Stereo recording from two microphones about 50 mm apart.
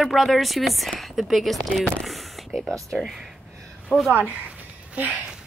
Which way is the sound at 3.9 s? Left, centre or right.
Right.